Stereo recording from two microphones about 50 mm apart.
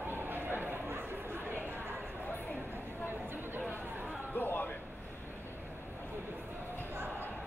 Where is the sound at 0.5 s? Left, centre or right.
Right.